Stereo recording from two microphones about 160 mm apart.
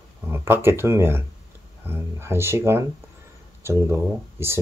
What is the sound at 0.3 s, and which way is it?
Speech, 15° right (ahead or behind).